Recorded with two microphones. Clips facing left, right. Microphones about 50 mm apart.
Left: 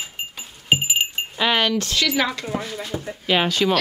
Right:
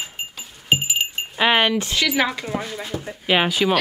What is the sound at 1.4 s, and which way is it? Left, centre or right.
A woman's voice, right.